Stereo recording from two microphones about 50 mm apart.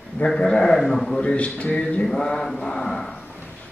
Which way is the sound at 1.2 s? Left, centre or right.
Left.